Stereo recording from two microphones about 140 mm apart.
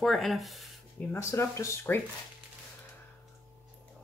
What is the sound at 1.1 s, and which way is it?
Speech, 20° left (ahead or behind).